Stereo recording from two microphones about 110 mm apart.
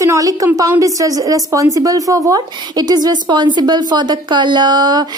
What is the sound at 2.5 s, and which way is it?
A woman's voice, 40° right (ahead or behind).